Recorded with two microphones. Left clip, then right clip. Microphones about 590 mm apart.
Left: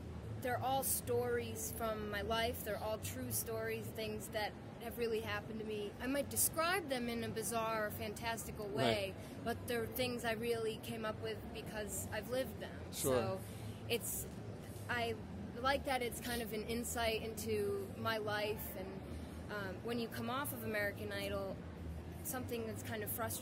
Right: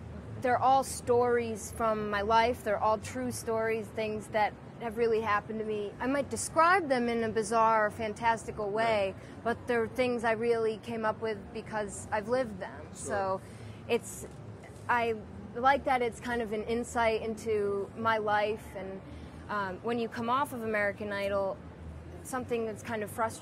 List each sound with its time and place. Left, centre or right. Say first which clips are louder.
0.4 s a woman's voice: right 12 dB; right
9.4 s a woman's voice: right 10 dB; right
13.1 s speech: right 2 dB; left
14.9 s a woman's voice: right 11 dB; right